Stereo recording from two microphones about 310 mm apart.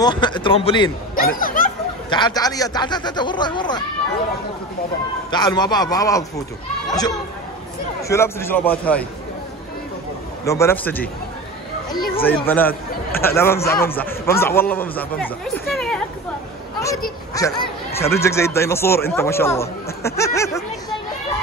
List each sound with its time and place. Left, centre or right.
0.0 s speech: centre
1.1 s a sound: left
2.0 s speech: centre
5.3 s speech: centre
8.1 s speech: centre
10.4 s speech: centre
12.2 s speech: centre
17.3 s speech: centre